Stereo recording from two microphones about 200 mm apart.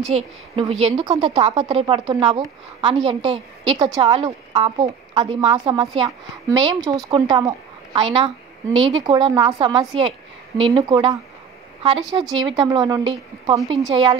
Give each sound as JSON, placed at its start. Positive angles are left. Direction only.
{"t": 0.1, "sound": "a woman's voice", "side_deg": -30}